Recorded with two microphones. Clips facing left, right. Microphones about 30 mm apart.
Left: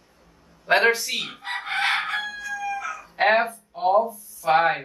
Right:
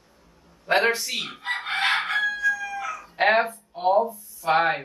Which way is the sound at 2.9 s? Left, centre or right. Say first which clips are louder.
Even; centre.